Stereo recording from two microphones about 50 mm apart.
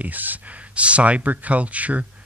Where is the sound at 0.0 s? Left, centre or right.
Right.